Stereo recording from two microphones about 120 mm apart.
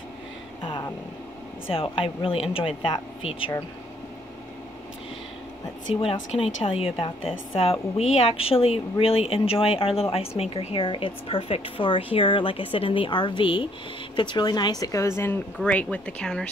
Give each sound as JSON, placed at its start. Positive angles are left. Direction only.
{"t": 0.6, "sound": "vehicle", "side_deg": 45}
{"t": 1.7, "sound": "a woman's voice", "side_deg": 50}
{"t": 5.9, "sound": "a woman's voice", "side_deg": 50}
{"t": 10.8, "sound": "a woman's voice", "side_deg": 45}